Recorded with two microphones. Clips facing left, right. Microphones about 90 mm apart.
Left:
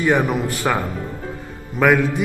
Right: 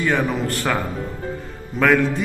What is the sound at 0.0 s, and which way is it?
Music, 15° left (ahead or behind).